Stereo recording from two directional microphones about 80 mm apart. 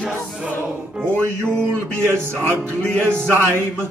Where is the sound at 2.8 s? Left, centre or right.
Centre.